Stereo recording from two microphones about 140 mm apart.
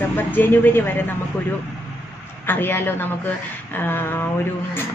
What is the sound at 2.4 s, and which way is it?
Speech, 15° left (ahead or behind).